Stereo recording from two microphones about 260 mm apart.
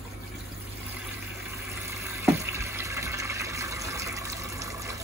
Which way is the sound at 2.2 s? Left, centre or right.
Centre.